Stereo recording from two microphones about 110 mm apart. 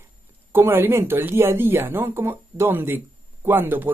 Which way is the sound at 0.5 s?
20° right (ahead or behind).